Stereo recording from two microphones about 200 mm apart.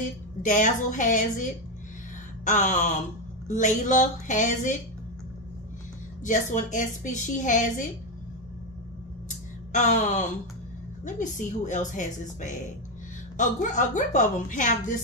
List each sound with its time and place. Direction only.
0.4 s a woman's voice: 40° left (ahead or behind)
6.2 s a woman's voice: 40° left (ahead or behind)
9.7 s a woman's voice: 35° left (ahead or behind)